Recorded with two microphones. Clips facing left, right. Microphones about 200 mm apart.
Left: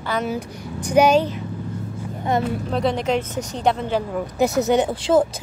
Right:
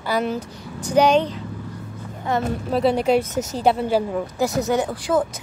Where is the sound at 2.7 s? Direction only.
5° right (ahead or behind).